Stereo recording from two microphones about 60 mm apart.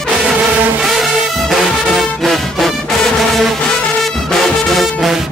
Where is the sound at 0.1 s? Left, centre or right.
Centre.